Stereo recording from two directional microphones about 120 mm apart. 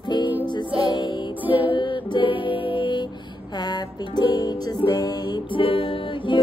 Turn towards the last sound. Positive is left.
turn(degrees=45)  # may be behind; listen again after turning